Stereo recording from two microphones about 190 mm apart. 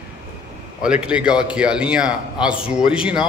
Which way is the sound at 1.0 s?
5° right (ahead or behind).